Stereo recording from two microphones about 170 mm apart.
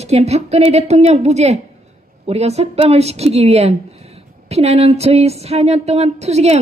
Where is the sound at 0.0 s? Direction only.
40° right (ahead or behind).